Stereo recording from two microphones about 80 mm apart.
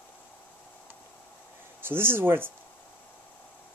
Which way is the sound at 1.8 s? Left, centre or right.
Right.